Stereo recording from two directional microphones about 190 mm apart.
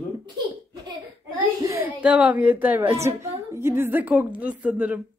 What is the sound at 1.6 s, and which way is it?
A woman's voice, 15° right (ahead or behind).